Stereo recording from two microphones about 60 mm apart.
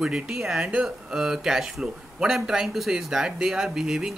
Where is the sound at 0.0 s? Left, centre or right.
Centre.